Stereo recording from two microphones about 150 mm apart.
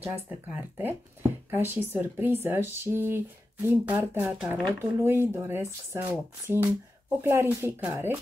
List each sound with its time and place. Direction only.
0.0 s speech: 10° right (ahead or behind)